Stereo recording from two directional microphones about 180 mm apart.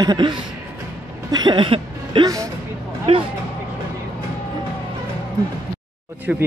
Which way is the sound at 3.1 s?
30° right (ahead or behind).